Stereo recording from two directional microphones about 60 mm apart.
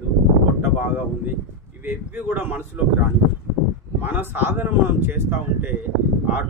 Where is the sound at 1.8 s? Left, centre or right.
Right.